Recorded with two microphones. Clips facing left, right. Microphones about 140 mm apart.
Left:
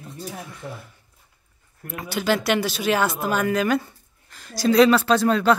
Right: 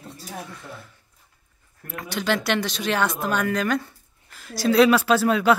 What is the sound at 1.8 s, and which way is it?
Speech, 5° left (ahead or behind).